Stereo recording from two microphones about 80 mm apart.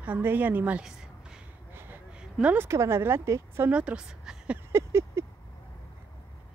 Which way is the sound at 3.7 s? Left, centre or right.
Centre.